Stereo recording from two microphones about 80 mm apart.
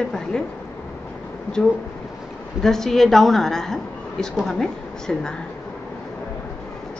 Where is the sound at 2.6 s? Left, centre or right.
Centre.